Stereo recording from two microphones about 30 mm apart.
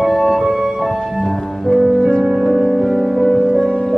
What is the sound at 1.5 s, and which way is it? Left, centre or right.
Music, centre.